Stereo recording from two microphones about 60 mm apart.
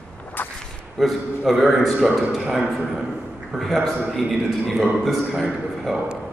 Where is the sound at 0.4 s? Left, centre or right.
Left.